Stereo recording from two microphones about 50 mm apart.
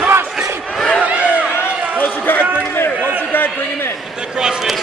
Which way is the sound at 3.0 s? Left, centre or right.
Right.